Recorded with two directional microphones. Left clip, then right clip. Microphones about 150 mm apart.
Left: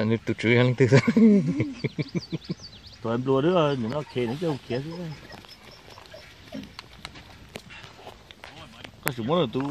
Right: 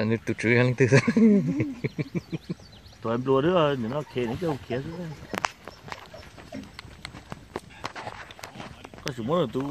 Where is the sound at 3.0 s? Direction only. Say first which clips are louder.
Even; 45° left (ahead or behind).